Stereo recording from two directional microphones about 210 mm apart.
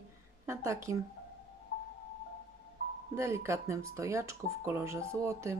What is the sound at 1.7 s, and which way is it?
Music, 50° left (ahead or behind).